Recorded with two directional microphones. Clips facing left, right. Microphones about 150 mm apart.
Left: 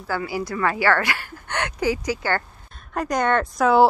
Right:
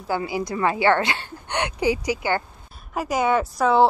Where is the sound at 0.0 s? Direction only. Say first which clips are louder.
Right 1 dB; 20° right (ahead or behind).